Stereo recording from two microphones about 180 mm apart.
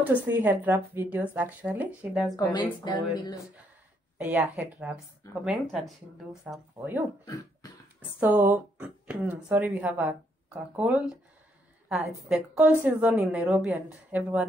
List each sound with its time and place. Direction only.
0.0 s speech: 10° right (ahead or behind)
2.3 s speech: 25° left (ahead or behind)
4.2 s a woman's voice: 10° right (ahead or behind)
8.2 s a woman's voice: 10° right (ahead or behind)